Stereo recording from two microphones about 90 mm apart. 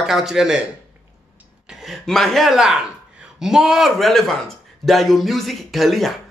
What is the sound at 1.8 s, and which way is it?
Speech, 5° left (ahead or behind).